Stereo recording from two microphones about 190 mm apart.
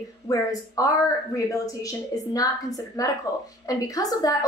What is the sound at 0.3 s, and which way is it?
Speech, 20° left (ahead or behind).